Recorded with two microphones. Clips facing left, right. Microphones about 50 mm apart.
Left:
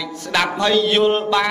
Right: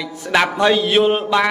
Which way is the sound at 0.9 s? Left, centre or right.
Centre.